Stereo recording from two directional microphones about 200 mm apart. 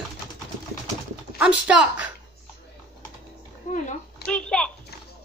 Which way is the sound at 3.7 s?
40° left (ahead or behind).